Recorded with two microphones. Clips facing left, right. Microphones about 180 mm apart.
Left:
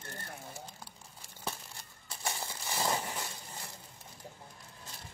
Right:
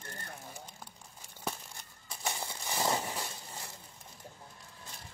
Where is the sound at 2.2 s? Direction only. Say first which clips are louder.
Right 1 dB; 20° right (ahead or behind).